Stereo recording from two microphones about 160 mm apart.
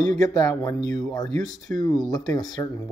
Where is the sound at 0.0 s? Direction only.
20° left (ahead or behind).